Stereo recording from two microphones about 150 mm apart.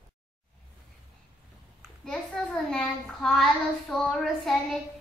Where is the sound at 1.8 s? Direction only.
5° left (ahead or behind).